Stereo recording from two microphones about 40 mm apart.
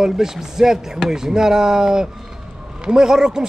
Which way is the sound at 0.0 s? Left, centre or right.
Centre.